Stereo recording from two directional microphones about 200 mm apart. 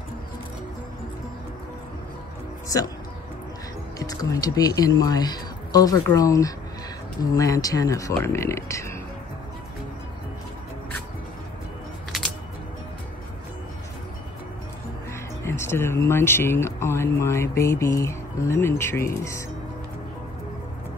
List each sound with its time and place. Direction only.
4.0 s speech: 15° left (ahead or behind)
15.4 s speech: 15° left (ahead or behind)